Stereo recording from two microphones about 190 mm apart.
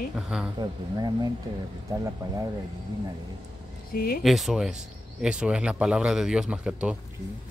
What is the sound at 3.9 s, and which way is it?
Speech, 50° left (ahead or behind).